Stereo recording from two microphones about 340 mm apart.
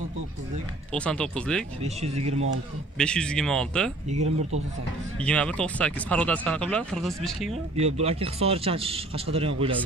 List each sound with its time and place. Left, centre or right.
0.9 s speech: centre
1.8 s speech: centre
3.0 s speech: centre
4.1 s speech: centre
5.2 s speech: centre
7.7 s speech: centre